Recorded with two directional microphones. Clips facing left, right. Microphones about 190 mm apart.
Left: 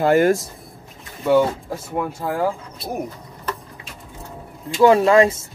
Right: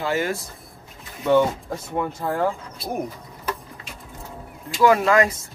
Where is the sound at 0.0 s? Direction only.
50° left (ahead or behind).